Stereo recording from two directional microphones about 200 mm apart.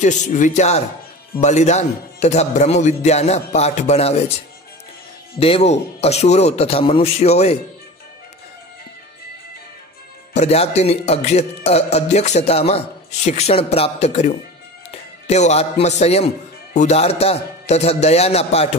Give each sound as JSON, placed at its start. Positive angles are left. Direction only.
{"t": 0.0, "sound": "a man's voice", "side_deg": 40}
{"t": 5.4, "sound": "a man's voice", "side_deg": 30}
{"t": 10.3, "sound": "a man's voice", "side_deg": 30}